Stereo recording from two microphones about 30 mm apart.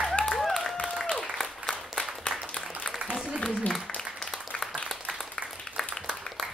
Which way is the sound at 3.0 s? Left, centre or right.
Right.